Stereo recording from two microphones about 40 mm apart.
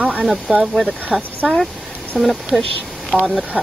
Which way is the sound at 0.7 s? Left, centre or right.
Centre.